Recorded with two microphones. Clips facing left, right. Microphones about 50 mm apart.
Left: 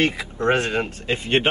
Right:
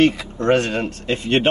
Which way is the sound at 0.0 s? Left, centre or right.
Centre.